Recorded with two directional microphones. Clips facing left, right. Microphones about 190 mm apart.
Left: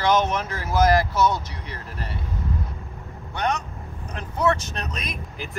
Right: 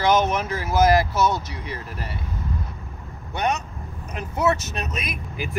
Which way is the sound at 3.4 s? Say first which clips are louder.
Right 1 dB; 10° right (ahead or behind).